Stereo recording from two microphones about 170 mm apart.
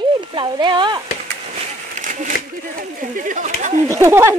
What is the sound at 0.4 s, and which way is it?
Speech, 30° right (ahead or behind).